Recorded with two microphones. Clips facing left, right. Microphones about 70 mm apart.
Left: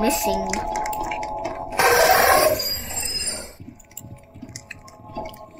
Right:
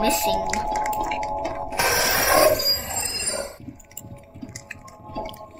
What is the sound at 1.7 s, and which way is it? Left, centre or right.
Mechanisms, left.